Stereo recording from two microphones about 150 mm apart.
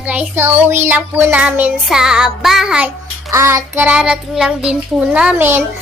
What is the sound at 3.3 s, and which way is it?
A child's voice, 15° right (ahead or behind).